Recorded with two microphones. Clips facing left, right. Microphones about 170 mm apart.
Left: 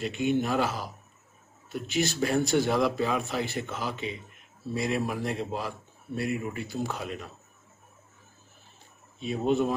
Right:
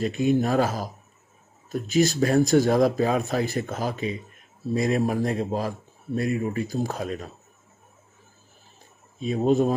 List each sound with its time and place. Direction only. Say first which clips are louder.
0.0 s speech: right 5 dB; 40° right (ahead or behind)
9.2 s speech: right 5 dB; 40° right (ahead or behind)